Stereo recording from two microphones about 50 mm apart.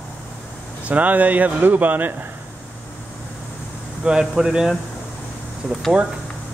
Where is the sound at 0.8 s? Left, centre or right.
Right.